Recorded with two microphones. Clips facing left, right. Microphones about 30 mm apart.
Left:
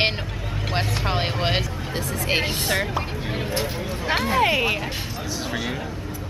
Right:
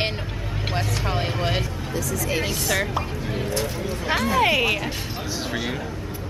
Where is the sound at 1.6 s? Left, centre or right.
Left.